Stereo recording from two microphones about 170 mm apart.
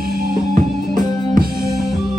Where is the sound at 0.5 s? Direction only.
50° right (ahead or behind).